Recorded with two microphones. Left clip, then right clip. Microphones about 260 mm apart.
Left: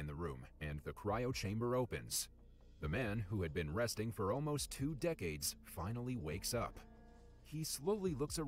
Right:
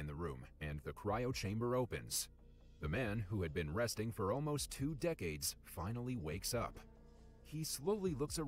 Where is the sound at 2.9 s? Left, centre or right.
Centre.